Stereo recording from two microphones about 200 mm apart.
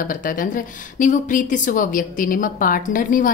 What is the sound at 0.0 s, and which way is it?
A woman's voice, 45° left (ahead or behind).